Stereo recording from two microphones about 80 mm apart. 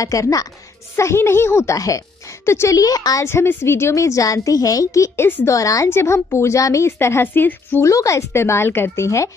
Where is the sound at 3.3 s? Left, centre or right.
Left.